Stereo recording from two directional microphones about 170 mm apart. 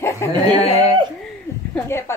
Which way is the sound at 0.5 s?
35° left (ahead or behind).